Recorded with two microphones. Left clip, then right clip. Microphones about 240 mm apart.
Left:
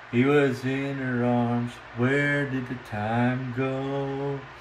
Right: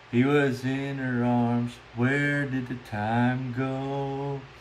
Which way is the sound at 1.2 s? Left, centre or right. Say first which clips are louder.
Left 1 dB; right.